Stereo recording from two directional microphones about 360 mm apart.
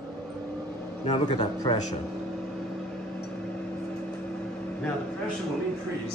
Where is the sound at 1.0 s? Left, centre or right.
Centre.